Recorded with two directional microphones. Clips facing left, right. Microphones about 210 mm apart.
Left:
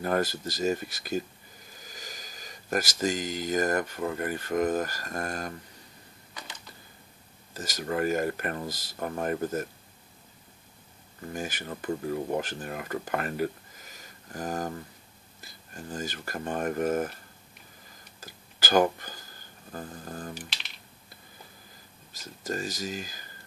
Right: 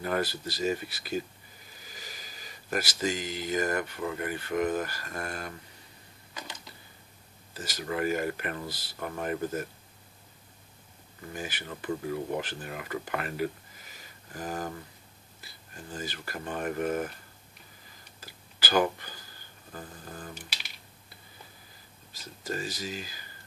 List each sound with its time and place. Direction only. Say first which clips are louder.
0.0 s speech: left 3 dB; 45° left (ahead or behind)
7.5 s speech: left 3 dB; 45° left (ahead or behind)
11.3 s speech: left 3 dB; 45° left (ahead or behind)
18.2 s a sound: left 2 dB; 45° left (ahead or behind)
19.7 s speech: left 4 dB; 40° left (ahead or behind)
22.1 s speech: left 2 dB; 45° left (ahead or behind)